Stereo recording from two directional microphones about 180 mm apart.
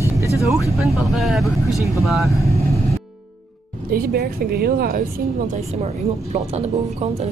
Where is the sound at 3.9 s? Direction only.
60° right (ahead or behind).